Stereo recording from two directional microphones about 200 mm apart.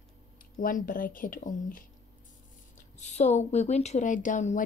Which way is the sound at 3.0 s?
35° left (ahead or behind).